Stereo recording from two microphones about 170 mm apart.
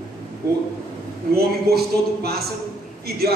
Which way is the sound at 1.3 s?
70° right (ahead or behind).